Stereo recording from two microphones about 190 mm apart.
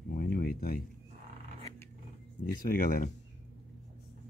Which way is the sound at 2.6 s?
45° left (ahead or behind).